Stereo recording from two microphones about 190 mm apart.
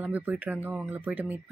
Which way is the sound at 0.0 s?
10° right (ahead or behind).